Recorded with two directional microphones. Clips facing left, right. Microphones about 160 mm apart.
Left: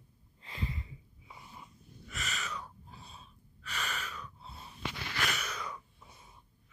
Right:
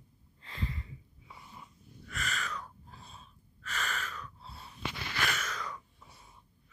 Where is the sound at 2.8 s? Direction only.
Centre (ahead or behind).